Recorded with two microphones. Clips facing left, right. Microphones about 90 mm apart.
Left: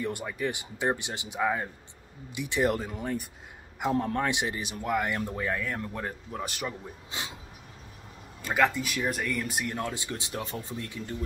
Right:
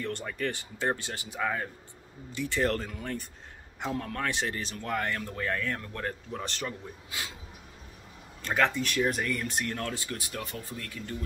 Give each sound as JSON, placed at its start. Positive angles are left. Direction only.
{"t": 0.0, "sound": "speech", "side_deg": 10}
{"t": 7.1, "sound": "a sound", "side_deg": 25}
{"t": 8.4, "sound": "speech", "side_deg": 5}
{"t": 9.8, "sound": "speech", "side_deg": 20}